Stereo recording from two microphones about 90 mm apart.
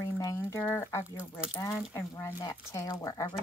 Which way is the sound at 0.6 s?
25° left (ahead or behind).